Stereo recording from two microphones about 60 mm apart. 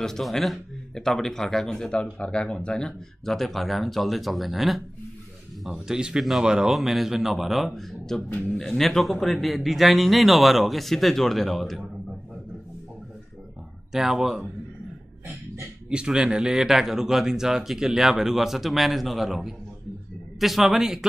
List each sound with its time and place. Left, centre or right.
0.0 s a man's voice: centre
3.3 s speech: centre
5.7 s speech: centre
13.9 s speech: centre
15.9 s speech: centre